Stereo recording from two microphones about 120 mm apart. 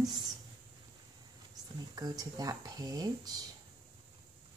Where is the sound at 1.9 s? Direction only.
30° right (ahead or behind).